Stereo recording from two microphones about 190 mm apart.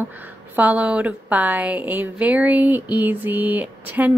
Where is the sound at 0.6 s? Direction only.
5° right (ahead or behind).